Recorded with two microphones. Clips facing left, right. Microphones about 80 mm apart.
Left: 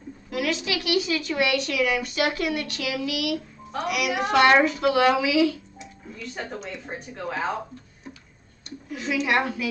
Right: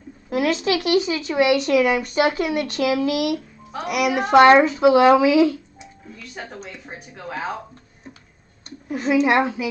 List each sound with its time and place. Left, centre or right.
0.3 s a woman's voice: right
0.7 s speech: right
1.6 s speech: right
2.7 s a woman's voice: right
4.3 s speech: right
5.1 s speech: right
6.0 s speech: centre
8.6 s a woman's voice: right
9.4 s speech: right